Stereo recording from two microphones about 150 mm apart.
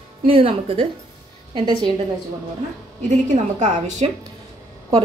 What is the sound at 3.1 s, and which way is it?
A woman's voice, 55° right (ahead or behind).